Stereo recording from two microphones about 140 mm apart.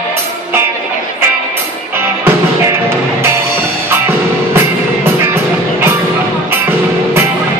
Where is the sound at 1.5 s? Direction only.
15° right (ahead or behind).